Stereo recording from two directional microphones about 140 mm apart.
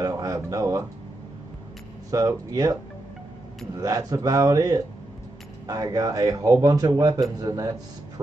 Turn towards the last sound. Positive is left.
turn(degrees=-25)  # may be behind; listen again after turning